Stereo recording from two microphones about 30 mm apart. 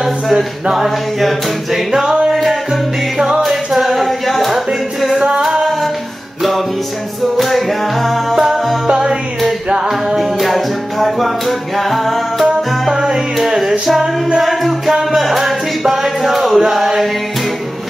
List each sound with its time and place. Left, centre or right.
0.0 s music: centre
1.9 s music: centre
2.3 s music: centre
3.7 s a sound: centre
5.4 s music: right
7.3 s music: centre
8.9 s music: right
10.1 s music: centre
12.9 s music: centre
14.4 s music: centre
16.2 s chant: centre
16.7 s music: centre